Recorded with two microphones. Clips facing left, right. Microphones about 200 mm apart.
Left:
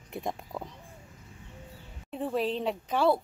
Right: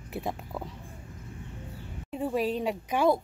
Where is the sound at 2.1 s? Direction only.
5° right (ahead or behind).